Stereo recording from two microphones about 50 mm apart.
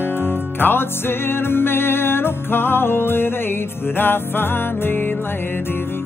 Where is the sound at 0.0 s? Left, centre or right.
Left.